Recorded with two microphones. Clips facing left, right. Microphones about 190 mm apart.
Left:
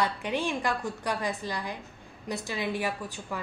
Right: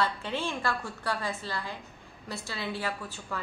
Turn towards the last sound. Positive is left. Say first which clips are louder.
# left 2 dB
turn(degrees=15)  # may be behind; listen again after turning